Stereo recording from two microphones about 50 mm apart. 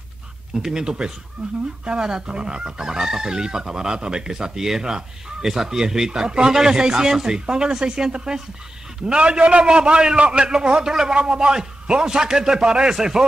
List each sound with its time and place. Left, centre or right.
0.6 s a man's voice: centre